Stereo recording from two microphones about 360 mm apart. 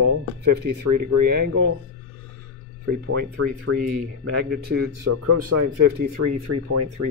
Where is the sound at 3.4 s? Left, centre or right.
Right.